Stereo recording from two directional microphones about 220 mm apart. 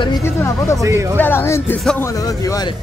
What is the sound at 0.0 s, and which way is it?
Speech, 15° left (ahead or behind).